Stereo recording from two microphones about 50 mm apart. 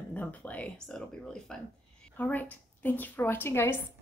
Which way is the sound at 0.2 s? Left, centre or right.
Left.